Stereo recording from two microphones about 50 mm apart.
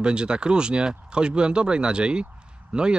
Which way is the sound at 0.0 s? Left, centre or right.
Centre.